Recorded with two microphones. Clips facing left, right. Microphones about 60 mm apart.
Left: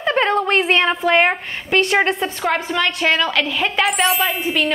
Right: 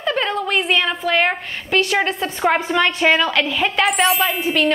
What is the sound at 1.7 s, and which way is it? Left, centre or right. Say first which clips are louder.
Speech: left 1 dB; centre.